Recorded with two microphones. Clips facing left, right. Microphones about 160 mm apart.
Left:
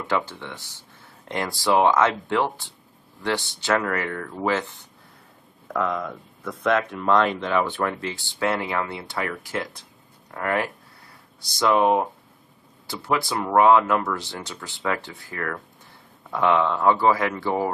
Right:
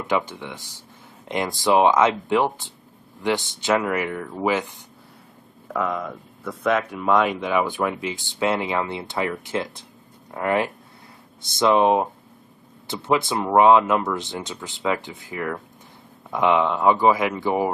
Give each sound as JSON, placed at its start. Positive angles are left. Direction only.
{"t": 0.0, "sound": "speech", "side_deg": -20}